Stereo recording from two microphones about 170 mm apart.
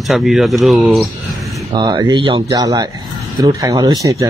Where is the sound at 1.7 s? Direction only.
25° right (ahead or behind).